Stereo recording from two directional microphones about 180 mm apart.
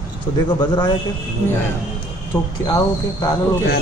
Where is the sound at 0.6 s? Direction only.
25° left (ahead or behind).